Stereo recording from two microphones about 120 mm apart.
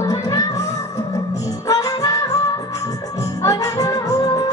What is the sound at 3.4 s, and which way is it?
Music, 30° left (ahead or behind).